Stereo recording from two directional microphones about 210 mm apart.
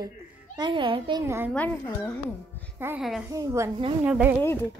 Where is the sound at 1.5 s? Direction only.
5° left (ahead or behind).